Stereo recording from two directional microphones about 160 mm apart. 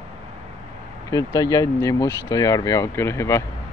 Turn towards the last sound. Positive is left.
turn(degrees=15)  # may be behind; listen again after turning